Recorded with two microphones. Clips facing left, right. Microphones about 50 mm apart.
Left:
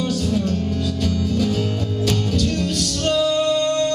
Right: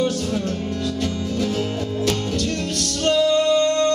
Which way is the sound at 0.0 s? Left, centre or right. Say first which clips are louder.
Even; centre.